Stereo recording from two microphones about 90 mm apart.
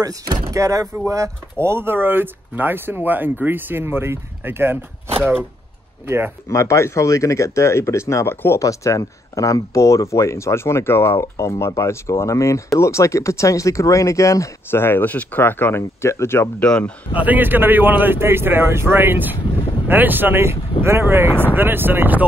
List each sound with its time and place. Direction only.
0.0 s speech: 40° right (ahead or behind)
6.5 s speech: 30° left (ahead or behind)
8.5 s speech: 40° left (ahead or behind)
16.5 s speech: 15° left (ahead or behind)
17.2 s speech: 20° right (ahead or behind)